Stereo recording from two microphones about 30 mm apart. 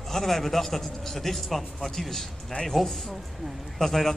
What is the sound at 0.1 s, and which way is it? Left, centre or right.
A man's voice, centre.